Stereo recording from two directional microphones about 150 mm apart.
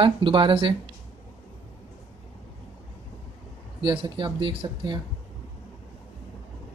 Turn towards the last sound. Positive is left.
turn(degrees=-30)  # may be behind; listen again after turning